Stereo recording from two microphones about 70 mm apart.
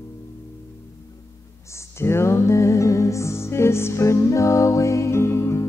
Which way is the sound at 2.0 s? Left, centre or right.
Left.